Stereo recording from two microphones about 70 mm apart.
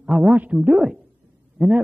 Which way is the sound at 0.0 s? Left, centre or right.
Centre.